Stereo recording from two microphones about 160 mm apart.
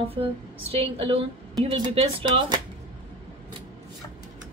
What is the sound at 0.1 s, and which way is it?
A woman's voice, 35° right (ahead or behind).